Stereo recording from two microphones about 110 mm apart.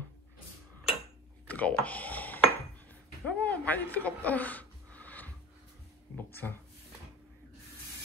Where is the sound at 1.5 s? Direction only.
15° left (ahead or behind).